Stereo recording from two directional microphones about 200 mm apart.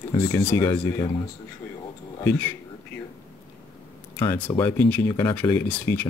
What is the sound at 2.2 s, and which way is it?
Speech, 10° left (ahead or behind).